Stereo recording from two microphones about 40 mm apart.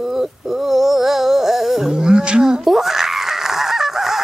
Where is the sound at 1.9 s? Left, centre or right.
Centre.